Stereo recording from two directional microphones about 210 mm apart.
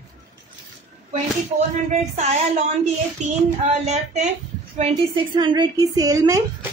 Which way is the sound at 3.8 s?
30° right (ahead or behind).